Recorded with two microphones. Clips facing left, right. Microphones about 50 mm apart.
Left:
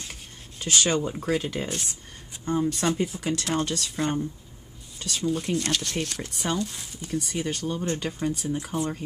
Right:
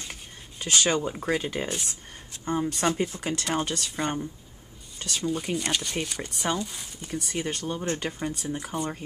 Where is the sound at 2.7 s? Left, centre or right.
Right.